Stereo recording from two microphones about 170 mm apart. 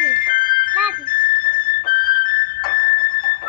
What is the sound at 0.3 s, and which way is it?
Music, 55° left (ahead or behind).